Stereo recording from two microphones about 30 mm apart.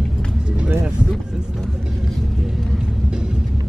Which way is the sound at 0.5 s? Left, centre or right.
Right.